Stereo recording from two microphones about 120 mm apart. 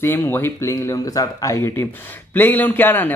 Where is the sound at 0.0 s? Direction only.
20° left (ahead or behind).